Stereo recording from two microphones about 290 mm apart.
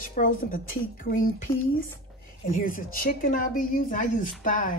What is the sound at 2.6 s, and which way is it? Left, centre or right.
A woman's voice, left.